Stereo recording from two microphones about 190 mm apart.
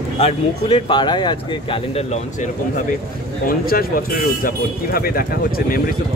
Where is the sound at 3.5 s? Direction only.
50° left (ahead or behind).